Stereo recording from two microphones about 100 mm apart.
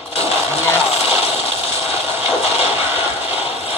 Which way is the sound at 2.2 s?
90° left.